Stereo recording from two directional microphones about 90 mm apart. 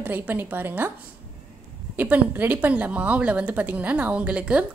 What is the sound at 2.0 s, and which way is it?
A woman's voice, 20° right (ahead or behind).